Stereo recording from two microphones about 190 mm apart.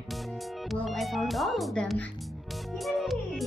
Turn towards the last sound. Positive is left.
turn(degrees=0)  # may be behind; listen again after turning